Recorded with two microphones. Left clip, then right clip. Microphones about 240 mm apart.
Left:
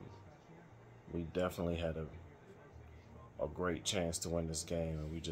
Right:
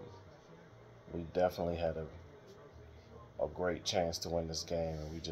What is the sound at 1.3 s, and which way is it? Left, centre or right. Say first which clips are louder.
Speech: right 5 dB; centre.